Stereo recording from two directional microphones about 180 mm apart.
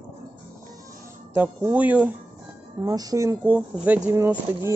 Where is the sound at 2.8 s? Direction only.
20° right (ahead or behind).